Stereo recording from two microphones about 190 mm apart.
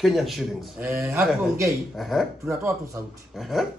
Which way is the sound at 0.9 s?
10° right (ahead or behind).